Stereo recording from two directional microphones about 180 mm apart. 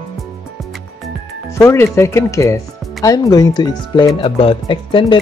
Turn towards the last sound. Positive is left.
turn(degrees=25)  # may be behind; listen again after turning